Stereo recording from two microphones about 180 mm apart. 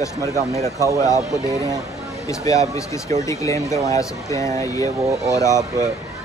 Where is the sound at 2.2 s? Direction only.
20° left (ahead or behind).